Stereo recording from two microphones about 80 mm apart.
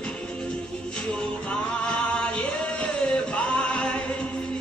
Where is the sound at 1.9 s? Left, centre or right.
Centre.